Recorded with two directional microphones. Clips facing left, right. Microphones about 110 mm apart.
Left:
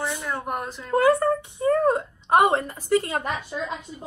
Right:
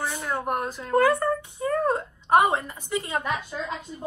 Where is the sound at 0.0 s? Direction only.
15° right (ahead or behind).